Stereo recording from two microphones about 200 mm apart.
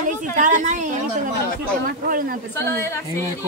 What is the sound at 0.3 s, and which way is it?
Speech, 40° right (ahead or behind).